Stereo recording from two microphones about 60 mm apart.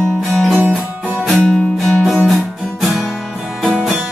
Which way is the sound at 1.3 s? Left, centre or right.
Centre.